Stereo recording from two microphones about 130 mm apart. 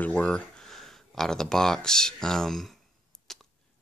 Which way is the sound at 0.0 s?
10° left (ahead or behind).